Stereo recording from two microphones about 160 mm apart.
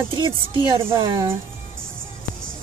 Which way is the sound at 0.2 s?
30° right (ahead or behind).